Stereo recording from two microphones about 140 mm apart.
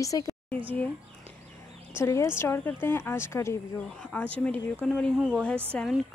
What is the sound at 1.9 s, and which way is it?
Speech, 20° left (ahead or behind).